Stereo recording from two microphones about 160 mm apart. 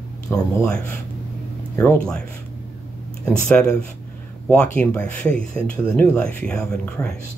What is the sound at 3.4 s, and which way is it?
Speech, 5° left (ahead or behind).